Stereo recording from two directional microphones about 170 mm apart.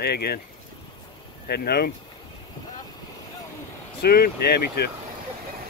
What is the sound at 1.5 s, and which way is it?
Speech, 70° left (ahead or behind).